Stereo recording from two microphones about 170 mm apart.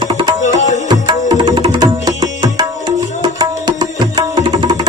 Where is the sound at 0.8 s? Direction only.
25° right (ahead or behind).